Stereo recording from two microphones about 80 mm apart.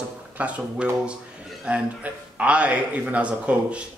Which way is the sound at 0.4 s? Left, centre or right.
Centre.